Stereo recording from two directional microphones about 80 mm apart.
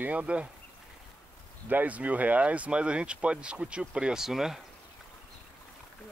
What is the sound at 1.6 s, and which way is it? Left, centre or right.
Speech, centre.